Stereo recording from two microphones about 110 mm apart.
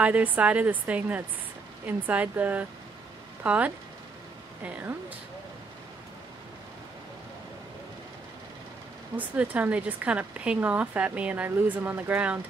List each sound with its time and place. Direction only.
0.0 s speech: 15° right (ahead or behind)
9.1 s speech: 15° right (ahead or behind)